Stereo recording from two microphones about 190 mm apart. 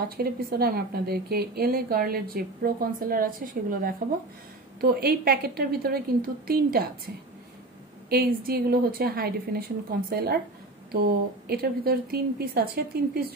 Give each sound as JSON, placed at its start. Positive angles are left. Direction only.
{"t": 0.2, "sound": "a woman's voice", "side_deg": -55}
{"t": 8.1, "sound": "a woman's voice", "side_deg": -55}